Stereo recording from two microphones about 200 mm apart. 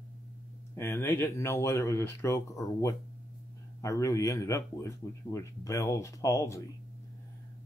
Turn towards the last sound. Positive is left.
turn(degrees=15)  # may be behind; listen again after turning